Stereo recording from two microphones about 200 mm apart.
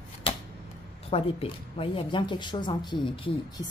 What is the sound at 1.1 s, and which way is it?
Speech, 30° left (ahead or behind).